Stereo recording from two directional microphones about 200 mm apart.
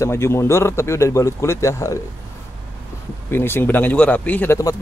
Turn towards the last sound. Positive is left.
turn(degrees=15)  # may be behind; listen again after turning